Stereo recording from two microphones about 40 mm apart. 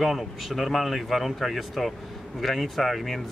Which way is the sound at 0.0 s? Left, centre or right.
Centre.